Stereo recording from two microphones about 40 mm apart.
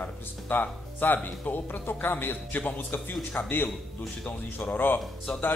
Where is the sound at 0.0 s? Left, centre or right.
Left.